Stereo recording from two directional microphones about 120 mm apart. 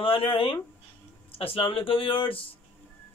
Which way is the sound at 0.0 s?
50° left (ahead or behind).